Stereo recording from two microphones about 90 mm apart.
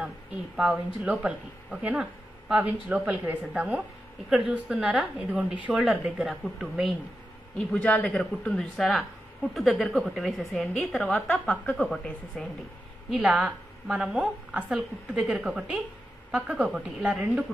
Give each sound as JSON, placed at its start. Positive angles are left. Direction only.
{"t": 1.0, "sound": "a woman's voice", "side_deg": -15}
{"t": 2.6, "sound": "a woman's voice", "side_deg": -20}
{"t": 7.5, "sound": "a woman's voice", "side_deg": 15}
{"t": 13.1, "sound": "a woman's voice", "side_deg": -5}